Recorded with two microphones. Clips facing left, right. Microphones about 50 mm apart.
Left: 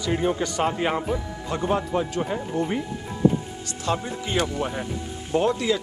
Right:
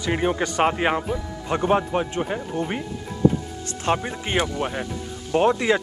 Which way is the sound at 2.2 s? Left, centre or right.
Right.